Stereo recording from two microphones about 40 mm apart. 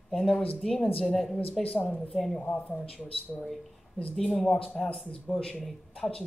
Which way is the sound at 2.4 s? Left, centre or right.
Left.